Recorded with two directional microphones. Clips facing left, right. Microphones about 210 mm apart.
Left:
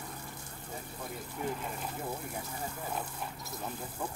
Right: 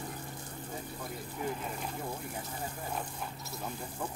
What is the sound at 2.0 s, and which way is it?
Speech, 5° left (ahead or behind).